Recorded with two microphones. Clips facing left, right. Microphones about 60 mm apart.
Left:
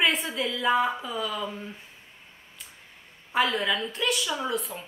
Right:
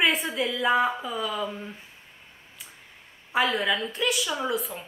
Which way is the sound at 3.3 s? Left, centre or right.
Centre.